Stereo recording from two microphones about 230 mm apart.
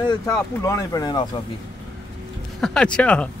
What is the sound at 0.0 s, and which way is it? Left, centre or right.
Speech, centre.